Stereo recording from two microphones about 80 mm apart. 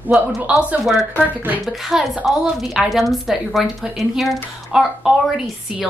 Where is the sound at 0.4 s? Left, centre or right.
Centre.